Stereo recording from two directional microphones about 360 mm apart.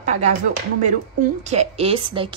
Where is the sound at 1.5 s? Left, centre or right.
Centre.